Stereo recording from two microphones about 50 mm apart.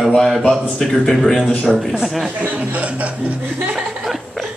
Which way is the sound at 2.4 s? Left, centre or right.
Right.